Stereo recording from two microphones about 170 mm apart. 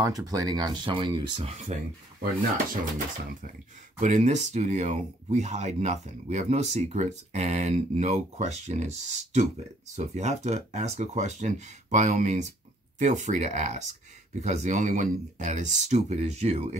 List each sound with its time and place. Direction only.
0.0 s speech: 20° right (ahead or behind)
1.7 s speech: 45° right (ahead or behind)
2.1 s speech: 55° right (ahead or behind)
4.0 s speech: 45° right (ahead or behind)